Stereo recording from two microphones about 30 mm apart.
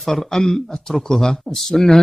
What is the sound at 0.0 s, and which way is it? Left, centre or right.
Speech, centre.